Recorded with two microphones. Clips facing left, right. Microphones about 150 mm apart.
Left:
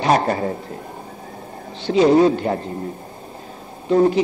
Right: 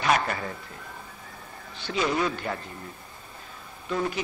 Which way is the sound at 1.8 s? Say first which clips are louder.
Left 13 dB; 25° left (ahead or behind).